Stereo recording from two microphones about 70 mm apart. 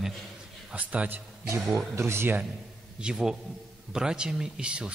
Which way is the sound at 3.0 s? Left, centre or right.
Centre.